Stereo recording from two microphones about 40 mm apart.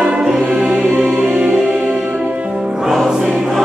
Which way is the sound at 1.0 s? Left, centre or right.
Right.